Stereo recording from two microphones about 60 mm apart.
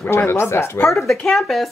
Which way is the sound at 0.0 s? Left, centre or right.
Left.